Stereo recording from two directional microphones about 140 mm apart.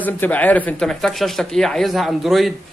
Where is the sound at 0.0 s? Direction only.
10° left (ahead or behind).